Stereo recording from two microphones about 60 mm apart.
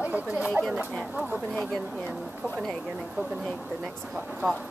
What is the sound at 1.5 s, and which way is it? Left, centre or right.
Speech, centre.